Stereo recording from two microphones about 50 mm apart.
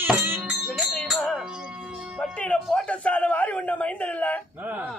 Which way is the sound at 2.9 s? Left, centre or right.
Left.